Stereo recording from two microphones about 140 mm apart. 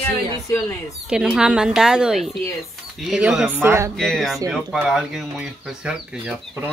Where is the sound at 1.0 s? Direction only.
5° right (ahead or behind).